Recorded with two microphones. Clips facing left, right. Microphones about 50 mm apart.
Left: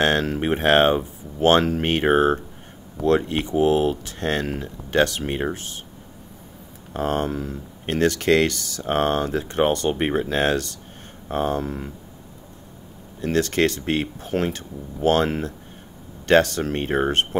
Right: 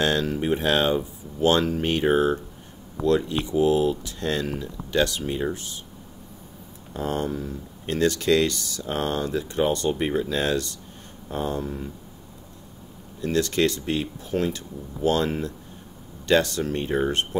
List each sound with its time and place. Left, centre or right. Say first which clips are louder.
0.0 s speech: left 3 dB; left
6.9 s speech: left 3 dB; left
13.2 s speech: left 2 dB; left